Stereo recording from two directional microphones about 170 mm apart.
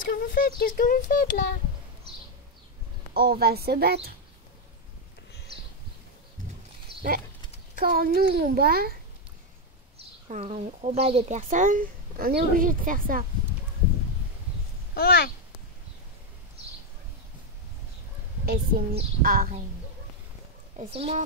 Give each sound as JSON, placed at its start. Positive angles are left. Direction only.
{"t": 0.0, "sound": "speech", "side_deg": 55}
{"t": 3.2, "sound": "a woman's voice", "side_deg": -65}
{"t": 7.7, "sound": "a child's voice", "side_deg": -65}
{"t": 10.2, "sound": "speech", "side_deg": -40}
{"t": 15.0, "sound": "a child's voice", "side_deg": 65}
{"t": 18.4, "sound": "a child's voice", "side_deg": -65}
{"t": 20.7, "sound": "speech", "side_deg": -40}